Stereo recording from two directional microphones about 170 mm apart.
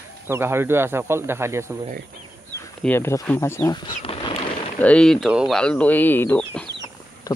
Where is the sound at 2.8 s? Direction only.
15° left (ahead or behind).